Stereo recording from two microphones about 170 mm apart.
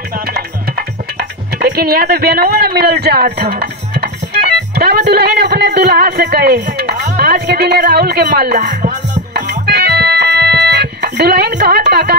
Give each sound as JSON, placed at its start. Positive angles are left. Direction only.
{"t": 1.6, "sound": "a man's voice", "side_deg": -65}
{"t": 9.3, "sound": "organ", "side_deg": -75}